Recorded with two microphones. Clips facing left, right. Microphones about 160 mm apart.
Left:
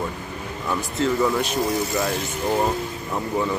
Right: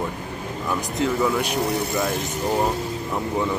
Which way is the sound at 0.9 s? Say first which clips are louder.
Left 1 dB; 15° right (ahead or behind).